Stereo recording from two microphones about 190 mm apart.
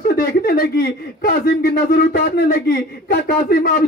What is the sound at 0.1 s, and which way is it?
A man's voice, 55° left (ahead or behind).